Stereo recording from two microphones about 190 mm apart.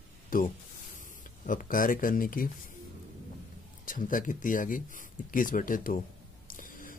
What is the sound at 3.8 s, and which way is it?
Speech, 45° left (ahead or behind).